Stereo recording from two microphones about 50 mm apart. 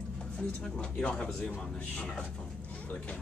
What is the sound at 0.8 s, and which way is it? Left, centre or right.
A man's voice, left.